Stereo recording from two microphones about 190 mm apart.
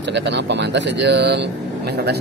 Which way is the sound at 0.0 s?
65° right (ahead or behind).